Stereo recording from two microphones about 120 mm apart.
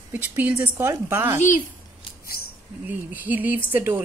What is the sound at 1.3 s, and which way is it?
Speech, 90° left.